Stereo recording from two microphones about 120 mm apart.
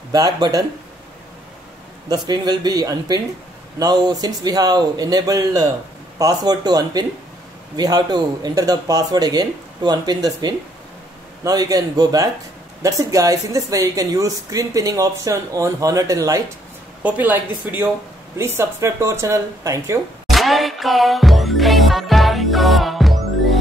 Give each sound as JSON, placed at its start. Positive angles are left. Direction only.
{"t": 0.1, "sound": "speech", "side_deg": -35}
{"t": 2.0, "sound": "speech", "side_deg": -35}
{"t": 17.0, "sound": "speech", "side_deg": -15}
{"t": 20.2, "sound": "music", "side_deg": 0}